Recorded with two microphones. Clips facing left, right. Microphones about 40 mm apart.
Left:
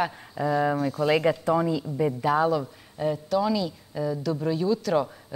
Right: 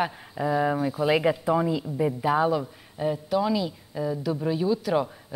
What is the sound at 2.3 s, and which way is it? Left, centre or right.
A woman's voice, centre.